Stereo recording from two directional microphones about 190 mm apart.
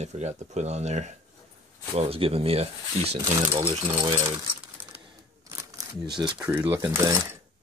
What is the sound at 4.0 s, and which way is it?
Speech, 15° right (ahead or behind).